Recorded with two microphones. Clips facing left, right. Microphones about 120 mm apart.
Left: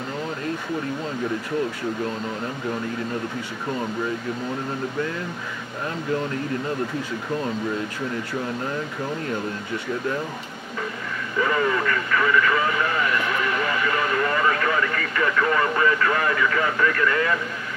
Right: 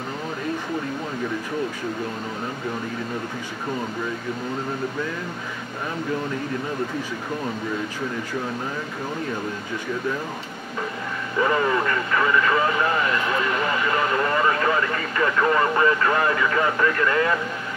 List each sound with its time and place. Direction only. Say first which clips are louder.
11.3 s speech: right 1 dB; 30° right (ahead or behind)